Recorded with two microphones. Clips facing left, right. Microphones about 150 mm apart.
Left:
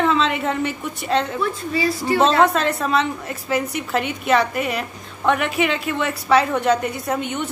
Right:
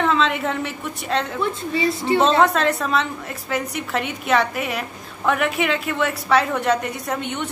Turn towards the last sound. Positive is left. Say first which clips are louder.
# left 2 dB
turn(degrees=0)  # may be behind; listen again after turning